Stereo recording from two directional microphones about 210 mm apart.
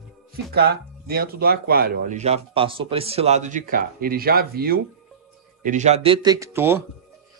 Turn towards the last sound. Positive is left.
turn(degrees=-10)  # may be behind; listen again after turning